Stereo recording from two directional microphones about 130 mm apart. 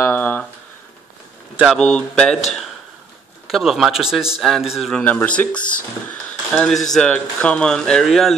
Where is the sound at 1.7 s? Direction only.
5° left (ahead or behind).